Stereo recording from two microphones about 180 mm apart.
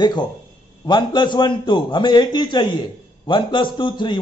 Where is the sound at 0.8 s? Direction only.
25° left (ahead or behind).